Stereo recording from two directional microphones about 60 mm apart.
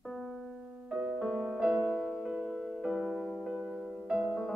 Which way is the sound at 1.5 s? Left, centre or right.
Centre.